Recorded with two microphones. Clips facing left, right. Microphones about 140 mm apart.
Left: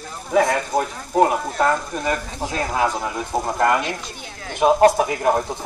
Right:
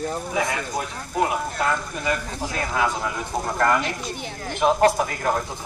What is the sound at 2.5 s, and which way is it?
Speech, 30° left (ahead or behind).